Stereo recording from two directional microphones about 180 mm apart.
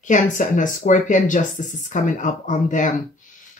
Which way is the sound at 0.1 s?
45° left (ahead or behind).